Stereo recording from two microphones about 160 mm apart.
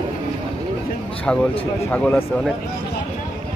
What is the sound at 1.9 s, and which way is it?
Speech, 10° left (ahead or behind).